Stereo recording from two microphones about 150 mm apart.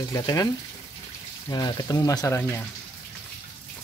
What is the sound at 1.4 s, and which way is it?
Speech, 25° left (ahead or behind).